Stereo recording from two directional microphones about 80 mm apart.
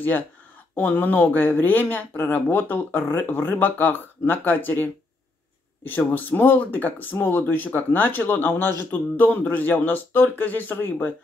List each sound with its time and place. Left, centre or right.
0.7 s speech: left
5.9 s speech: left